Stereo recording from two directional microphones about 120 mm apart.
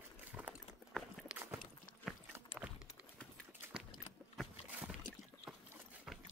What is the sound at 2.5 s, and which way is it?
Clip-clop, 55° left (ahead or behind).